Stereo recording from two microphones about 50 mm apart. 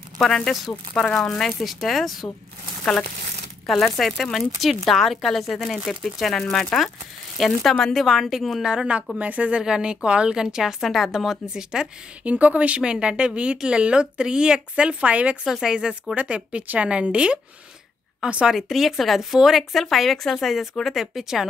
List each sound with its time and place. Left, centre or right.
0.2 s speech: centre
1.3 s speech: centre
3.8 s speech: centre
8.6 s a woman's voice: centre
12.3 s speech: right
15.4 s a woman's voice: centre
18.5 s speech: centre